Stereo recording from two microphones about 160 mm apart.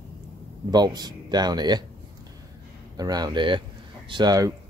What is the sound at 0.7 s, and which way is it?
Speech, 25° right (ahead or behind).